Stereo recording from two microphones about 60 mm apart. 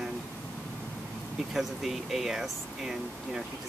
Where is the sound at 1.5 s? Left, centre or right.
Centre.